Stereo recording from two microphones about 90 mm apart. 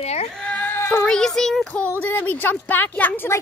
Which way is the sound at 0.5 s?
20° left (ahead or behind).